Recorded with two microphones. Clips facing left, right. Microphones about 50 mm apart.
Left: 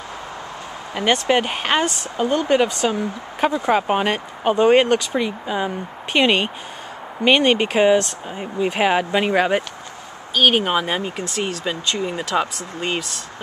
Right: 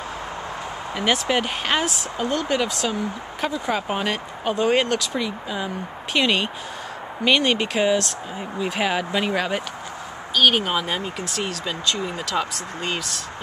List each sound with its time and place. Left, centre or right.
0.9 s speech: centre
3.4 s speech: left